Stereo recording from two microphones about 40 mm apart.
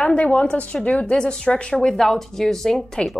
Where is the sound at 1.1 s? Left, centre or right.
Centre.